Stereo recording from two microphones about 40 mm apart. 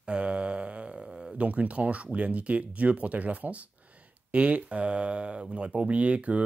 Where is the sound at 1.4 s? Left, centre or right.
Right.